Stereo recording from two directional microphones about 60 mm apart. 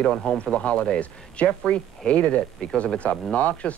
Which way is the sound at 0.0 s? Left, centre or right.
Centre.